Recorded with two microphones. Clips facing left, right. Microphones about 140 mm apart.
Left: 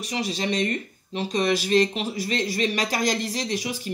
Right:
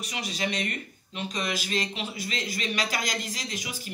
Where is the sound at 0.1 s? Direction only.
35° left (ahead or behind).